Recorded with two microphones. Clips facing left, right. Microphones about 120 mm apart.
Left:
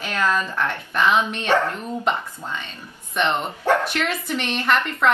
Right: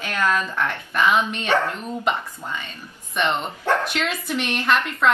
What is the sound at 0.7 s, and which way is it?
Speech, 5° right (ahead or behind).